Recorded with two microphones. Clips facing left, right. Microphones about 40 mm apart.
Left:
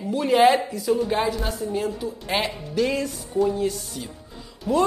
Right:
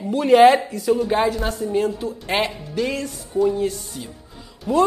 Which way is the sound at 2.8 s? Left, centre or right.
Centre.